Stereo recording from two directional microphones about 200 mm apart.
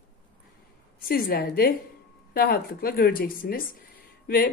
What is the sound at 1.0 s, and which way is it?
A woman's voice, 50° left (ahead or behind).